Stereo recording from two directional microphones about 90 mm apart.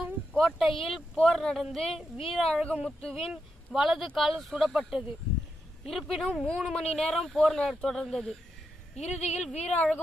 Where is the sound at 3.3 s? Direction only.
5° right (ahead or behind).